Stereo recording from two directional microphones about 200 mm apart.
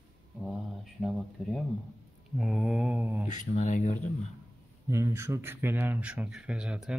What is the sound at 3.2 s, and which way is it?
Speech, 40° left (ahead or behind).